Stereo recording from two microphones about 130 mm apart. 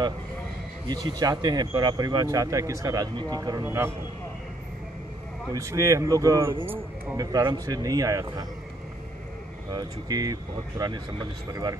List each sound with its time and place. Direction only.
0.8 s speech: 30° right (ahead or behind)
5.5 s speech: 25° right (ahead or behind)
9.7 s speech: 30° right (ahead or behind)